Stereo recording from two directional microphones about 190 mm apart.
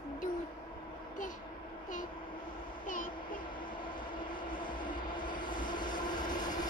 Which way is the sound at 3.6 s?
25° left (ahead or behind).